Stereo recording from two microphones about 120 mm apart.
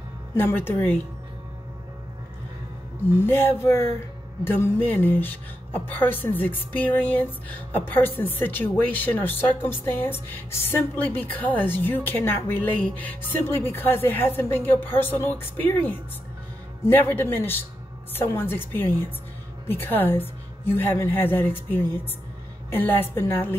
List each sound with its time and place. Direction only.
0.3 s speech: 20° left (ahead or behind)
3.2 s speech: 15° left (ahead or behind)